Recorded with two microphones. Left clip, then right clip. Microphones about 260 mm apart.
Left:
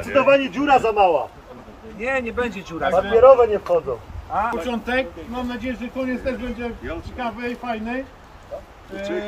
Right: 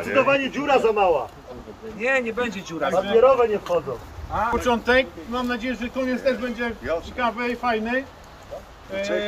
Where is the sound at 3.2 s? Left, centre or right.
Left.